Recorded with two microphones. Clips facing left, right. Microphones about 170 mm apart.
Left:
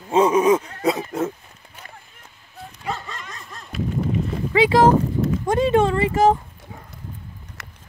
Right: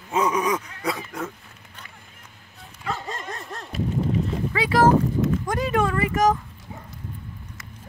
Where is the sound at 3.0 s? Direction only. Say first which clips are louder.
Right 4 dB; 45° right (ahead or behind).